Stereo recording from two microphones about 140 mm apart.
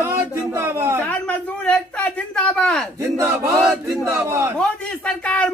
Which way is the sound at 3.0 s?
25° right (ahead or behind).